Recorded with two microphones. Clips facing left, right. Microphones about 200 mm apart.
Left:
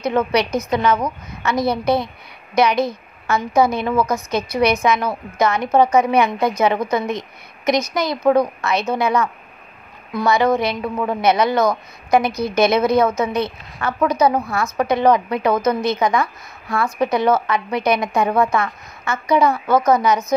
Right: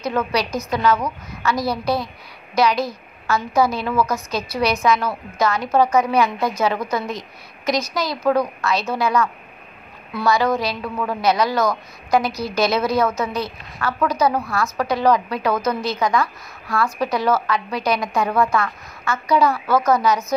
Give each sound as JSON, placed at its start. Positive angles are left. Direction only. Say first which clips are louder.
{"t": 0.0, "sound": "a woman's voice", "louder": "left 4 dB", "side_deg": 20}